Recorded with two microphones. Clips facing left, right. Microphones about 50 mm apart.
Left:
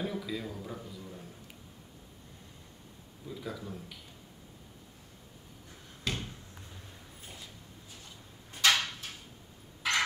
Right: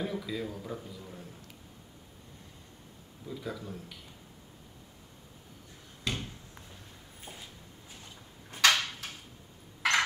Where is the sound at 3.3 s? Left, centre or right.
Centre.